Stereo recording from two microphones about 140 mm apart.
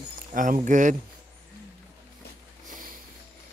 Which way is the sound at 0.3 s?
70° right (ahead or behind).